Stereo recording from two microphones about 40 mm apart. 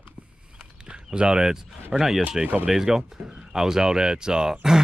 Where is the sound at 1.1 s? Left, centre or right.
Centre.